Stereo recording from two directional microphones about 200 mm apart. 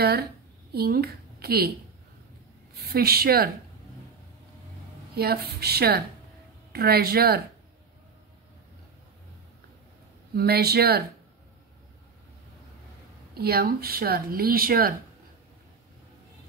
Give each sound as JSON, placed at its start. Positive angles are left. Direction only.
{"t": 0.7, "sound": "speech", "side_deg": -50}
{"t": 2.9, "sound": "speech", "side_deg": -50}
{"t": 5.1, "sound": "speech", "side_deg": -50}
{"t": 10.3, "sound": "speech", "side_deg": -50}
{"t": 13.3, "sound": "speech", "side_deg": -50}